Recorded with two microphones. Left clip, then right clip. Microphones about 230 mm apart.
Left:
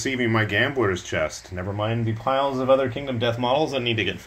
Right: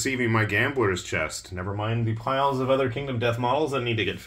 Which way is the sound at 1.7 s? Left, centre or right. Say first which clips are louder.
Left 4 dB; left.